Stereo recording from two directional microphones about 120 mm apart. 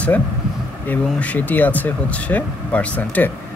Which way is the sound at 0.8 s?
15° left (ahead or behind).